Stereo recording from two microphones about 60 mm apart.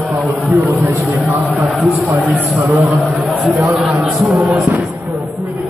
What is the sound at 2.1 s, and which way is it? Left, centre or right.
Speech, right.